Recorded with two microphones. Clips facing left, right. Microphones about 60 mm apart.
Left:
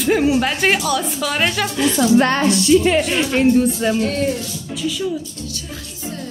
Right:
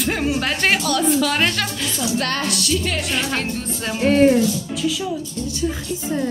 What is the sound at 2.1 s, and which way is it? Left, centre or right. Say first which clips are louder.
Music: left 8 dB; left.